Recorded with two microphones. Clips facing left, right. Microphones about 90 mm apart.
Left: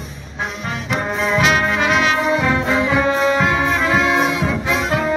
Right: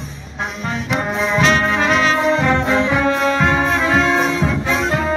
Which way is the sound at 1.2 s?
5° left (ahead or behind).